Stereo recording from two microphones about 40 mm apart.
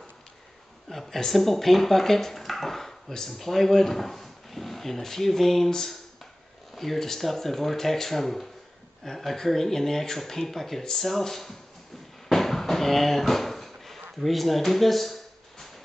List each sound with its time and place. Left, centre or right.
0.8 s speech: centre
12.3 s drawer open or close: centre
14.2 s speech: centre